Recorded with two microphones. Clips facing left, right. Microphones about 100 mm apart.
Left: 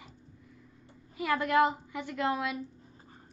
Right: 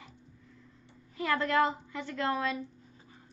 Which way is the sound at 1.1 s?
10° left (ahead or behind).